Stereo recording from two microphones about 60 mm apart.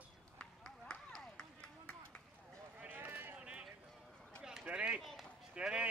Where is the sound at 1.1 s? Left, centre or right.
Centre.